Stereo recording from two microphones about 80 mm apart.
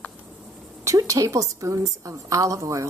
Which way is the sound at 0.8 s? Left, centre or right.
Right.